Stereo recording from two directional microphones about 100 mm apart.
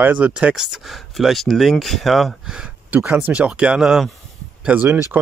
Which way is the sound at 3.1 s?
15° right (ahead or behind).